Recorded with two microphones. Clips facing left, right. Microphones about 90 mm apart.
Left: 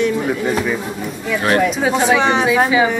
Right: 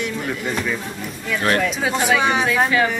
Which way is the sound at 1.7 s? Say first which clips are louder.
Left 4 dB; centre (ahead or behind).